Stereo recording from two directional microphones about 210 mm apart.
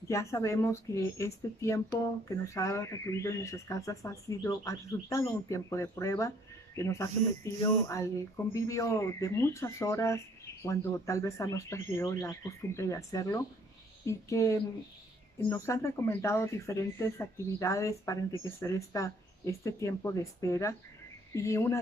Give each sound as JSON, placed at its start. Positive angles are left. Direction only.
{"t": 0.1, "sound": "speech", "side_deg": 15}